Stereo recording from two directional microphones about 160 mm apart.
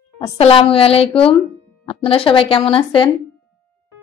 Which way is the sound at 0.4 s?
35° left (ahead or behind).